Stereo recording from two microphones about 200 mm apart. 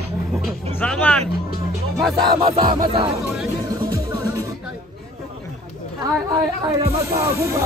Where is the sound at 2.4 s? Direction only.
20° right (ahead or behind).